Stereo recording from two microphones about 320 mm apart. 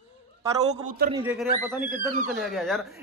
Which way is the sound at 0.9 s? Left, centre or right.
Right.